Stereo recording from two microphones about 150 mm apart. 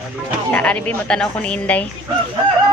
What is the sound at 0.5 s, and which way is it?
A woman's voice, 10° left (ahead or behind).